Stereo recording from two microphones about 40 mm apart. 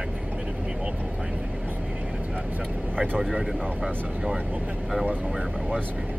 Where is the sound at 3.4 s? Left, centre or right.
Centre.